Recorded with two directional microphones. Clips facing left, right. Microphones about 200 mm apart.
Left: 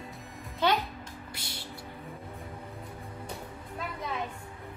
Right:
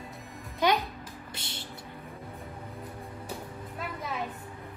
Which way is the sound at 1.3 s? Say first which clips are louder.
Right 1 dB; 25° right (ahead or behind).